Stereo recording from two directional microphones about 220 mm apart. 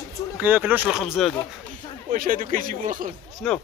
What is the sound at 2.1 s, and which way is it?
Speech, 40° right (ahead or behind).